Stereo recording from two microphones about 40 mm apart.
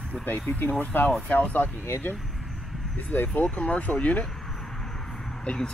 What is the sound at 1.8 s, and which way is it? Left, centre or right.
Speech, left.